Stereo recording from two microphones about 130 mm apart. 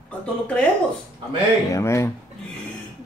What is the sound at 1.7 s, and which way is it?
Speech, 20° left (ahead or behind).